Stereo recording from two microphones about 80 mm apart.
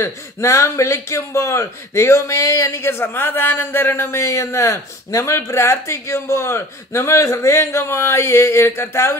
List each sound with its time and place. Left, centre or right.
0.0 s speech: left